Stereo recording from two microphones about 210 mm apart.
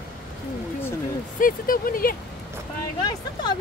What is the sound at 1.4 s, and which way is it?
Speech, 40° left (ahead or behind).